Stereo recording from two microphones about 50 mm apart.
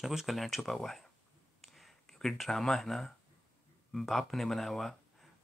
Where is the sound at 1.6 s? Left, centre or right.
Centre.